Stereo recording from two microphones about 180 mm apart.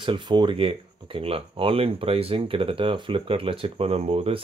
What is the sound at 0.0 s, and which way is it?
Speech, 25° right (ahead or behind).